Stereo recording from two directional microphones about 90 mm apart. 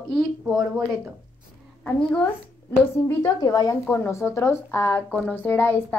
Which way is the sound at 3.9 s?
30° left (ahead or behind).